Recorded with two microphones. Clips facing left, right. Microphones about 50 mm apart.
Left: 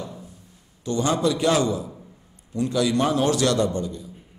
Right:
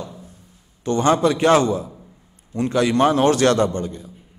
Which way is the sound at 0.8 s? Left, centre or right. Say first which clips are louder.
Right 5 dB; right.